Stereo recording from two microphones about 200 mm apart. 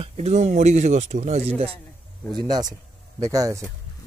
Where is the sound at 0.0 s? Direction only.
35° right (ahead or behind).